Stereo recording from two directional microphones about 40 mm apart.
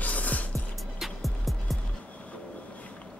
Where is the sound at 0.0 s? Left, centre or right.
Left.